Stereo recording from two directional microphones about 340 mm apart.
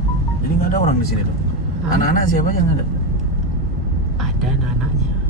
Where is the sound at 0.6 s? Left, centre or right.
Left.